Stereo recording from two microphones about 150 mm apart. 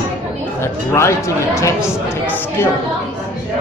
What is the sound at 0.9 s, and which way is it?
Speech, 20° left (ahead or behind).